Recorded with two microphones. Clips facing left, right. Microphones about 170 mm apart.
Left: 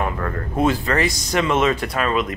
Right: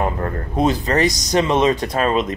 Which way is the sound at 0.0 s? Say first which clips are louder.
Right 2 dB; 30° right (ahead or behind).